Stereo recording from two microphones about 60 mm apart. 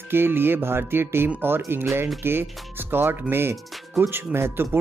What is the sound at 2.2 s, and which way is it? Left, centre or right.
Speech, right.